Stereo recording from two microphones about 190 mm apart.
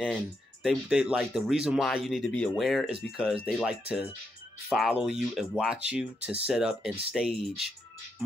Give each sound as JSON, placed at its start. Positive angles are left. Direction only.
{"t": 0.0, "sound": "speech", "side_deg": 0}